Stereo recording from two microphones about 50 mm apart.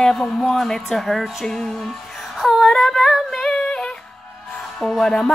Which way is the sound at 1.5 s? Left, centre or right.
Centre.